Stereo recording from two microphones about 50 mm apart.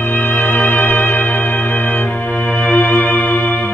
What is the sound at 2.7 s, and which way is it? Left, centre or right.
Music, left.